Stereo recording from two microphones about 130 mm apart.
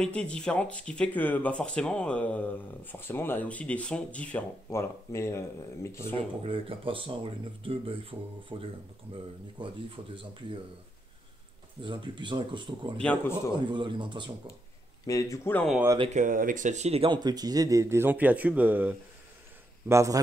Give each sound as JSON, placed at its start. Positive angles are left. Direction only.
{"t": 0.0, "sound": "speech", "side_deg": 10}
{"t": 4.6, "sound": "speech", "side_deg": 20}
{"t": 6.4, "sound": "speech", "side_deg": -45}
{"t": 11.8, "sound": "speech", "side_deg": -35}
{"t": 13.0, "sound": "speech", "side_deg": 10}
{"t": 13.7, "sound": "speech", "side_deg": -40}
{"t": 15.0, "sound": "speech", "side_deg": 25}
{"t": 16.1, "sound": "speech", "side_deg": -80}
{"t": 17.1, "sound": "speech", "side_deg": -30}
{"t": 19.9, "sound": "a man's voice", "side_deg": -25}